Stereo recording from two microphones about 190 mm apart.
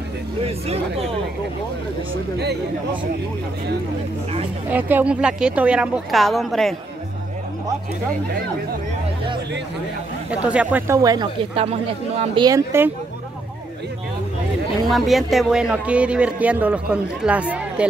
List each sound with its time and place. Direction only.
0.4 s speech: 30° right (ahead or behind)
4.6 s a man's voice: 10° right (ahead or behind)
10.3 s speech: 5° right (ahead or behind)
14.9 s a man's voice: centre (ahead or behind)